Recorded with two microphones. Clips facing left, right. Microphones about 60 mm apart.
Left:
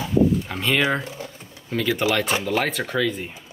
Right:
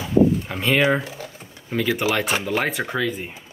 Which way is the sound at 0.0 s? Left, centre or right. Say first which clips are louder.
Right 2 dB; centre.